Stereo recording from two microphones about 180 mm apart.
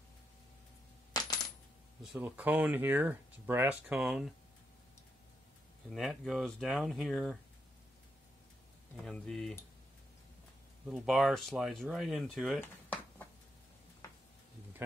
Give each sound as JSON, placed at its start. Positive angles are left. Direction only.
{"t": 1.1, "sound": "coin", "side_deg": 20}
{"t": 2.1, "sound": "speech", "side_deg": -10}
{"t": 5.9, "sound": "speech", "side_deg": 0}
{"t": 9.0, "sound": "speech", "side_deg": 5}
{"t": 10.9, "sound": "speech", "side_deg": 0}